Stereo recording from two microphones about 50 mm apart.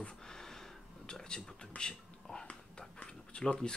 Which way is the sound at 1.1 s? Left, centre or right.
Centre.